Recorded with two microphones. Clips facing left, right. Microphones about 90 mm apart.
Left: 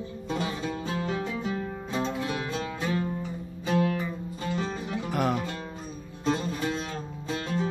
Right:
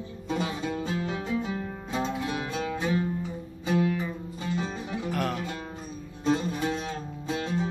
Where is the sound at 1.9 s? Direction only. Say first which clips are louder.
Even; 10° right (ahead or behind).